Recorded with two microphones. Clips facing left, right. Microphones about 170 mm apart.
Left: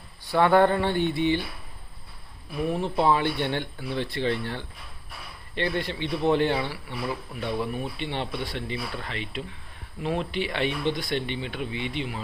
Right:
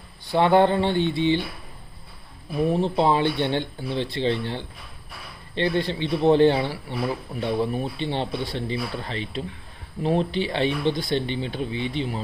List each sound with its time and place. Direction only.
0.3 s speech: 20° right (ahead or behind)
2.6 s speech: 30° right (ahead or behind)